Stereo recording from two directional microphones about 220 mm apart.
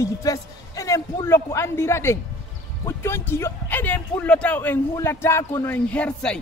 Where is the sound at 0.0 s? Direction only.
15° left (ahead or behind).